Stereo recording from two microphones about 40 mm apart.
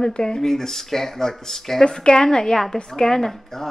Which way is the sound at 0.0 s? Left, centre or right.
Centre.